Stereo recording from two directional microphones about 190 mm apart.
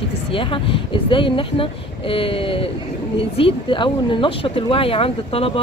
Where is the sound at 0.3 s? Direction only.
30° left (ahead or behind).